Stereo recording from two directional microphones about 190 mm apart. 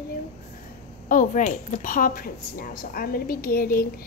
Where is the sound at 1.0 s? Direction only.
45° left (ahead or behind).